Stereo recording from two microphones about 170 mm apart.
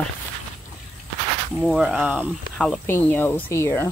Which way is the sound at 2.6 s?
5° left (ahead or behind).